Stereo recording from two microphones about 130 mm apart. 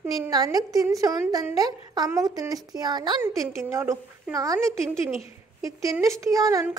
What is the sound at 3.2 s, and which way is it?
A woman's voice, 20° right (ahead or behind).